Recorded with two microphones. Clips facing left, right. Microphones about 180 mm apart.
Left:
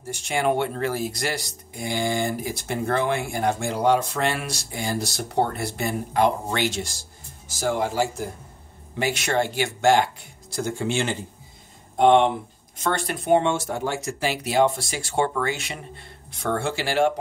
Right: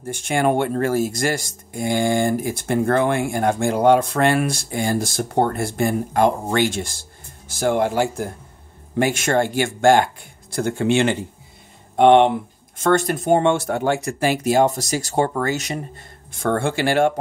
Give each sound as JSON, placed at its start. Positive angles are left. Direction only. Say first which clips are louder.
{"t": 0.0, "sound": "speech", "louder": "right 4 dB", "side_deg": -50}
{"t": 12.7, "sound": "speech", "louder": "right 8 dB", "side_deg": -45}